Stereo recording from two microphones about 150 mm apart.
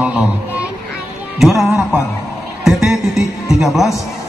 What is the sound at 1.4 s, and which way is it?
Speech, centre (ahead or behind).